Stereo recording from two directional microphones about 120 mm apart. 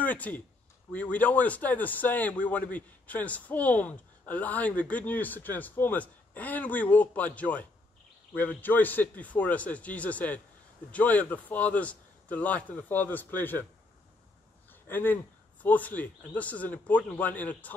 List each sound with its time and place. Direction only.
0.0 s speech: 15° left (ahead or behind)
14.7 s a sound: 15° left (ahead or behind)
15.6 s speech: 15° left (ahead or behind)